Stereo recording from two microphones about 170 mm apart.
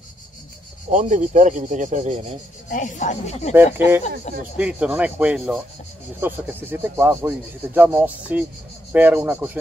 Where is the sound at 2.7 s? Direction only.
50° left (ahead or behind).